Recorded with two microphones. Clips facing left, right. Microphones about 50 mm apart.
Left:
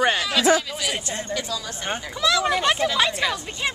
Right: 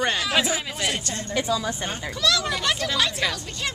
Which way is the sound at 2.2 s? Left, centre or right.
Centre.